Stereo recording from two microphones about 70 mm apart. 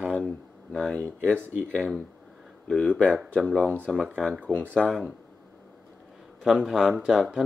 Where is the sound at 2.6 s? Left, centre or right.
Centre.